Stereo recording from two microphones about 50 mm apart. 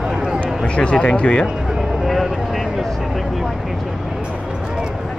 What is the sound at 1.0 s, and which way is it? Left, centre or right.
Speech, left.